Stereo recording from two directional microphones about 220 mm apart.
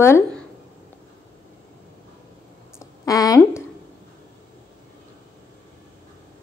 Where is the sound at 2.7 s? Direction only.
15° left (ahead or behind).